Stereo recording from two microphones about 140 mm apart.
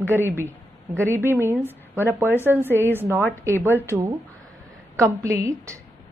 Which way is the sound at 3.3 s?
15° left (ahead or behind).